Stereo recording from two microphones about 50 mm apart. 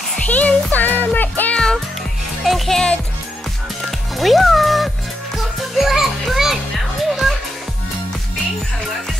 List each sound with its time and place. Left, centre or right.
0.3 s music: left
1.5 s music: centre
2.4 s music: centre
4.2 s music: centre